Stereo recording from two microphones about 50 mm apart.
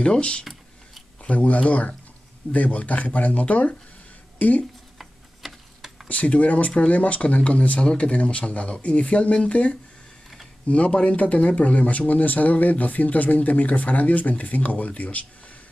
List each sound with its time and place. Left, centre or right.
0.0 s speech: left
4.9 s tick-tock: centre
6.0 s speech: left